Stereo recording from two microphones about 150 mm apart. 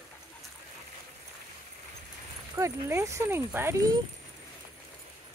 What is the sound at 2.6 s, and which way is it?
Speech, 20° right (ahead or behind).